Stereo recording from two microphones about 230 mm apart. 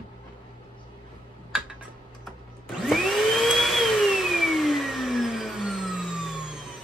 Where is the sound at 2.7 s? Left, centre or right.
Centre.